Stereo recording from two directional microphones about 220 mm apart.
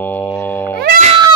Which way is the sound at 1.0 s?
25° right (ahead or behind).